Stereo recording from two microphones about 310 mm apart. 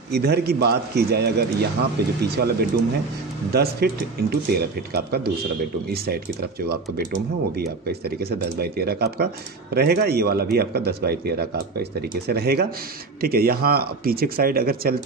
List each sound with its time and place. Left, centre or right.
0.1 s a man's voice: right